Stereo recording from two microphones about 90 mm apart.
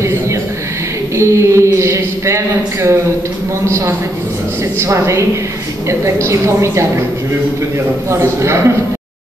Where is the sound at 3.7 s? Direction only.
30° right (ahead or behind).